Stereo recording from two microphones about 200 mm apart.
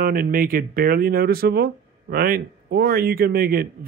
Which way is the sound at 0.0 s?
45° right (ahead or behind).